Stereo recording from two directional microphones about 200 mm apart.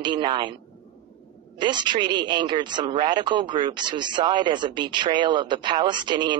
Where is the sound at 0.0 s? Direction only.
25° right (ahead or behind).